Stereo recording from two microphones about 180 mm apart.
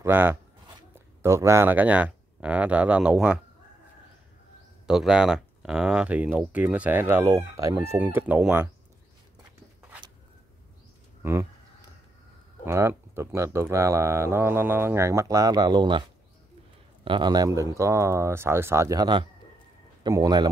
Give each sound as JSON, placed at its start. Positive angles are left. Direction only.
{"t": 0.0, "sound": "speech", "side_deg": -10}
{"t": 4.8, "sound": "speech", "side_deg": -5}
{"t": 11.2, "sound": "speech", "side_deg": -15}
{"t": 12.6, "sound": "a man's voice", "side_deg": -15}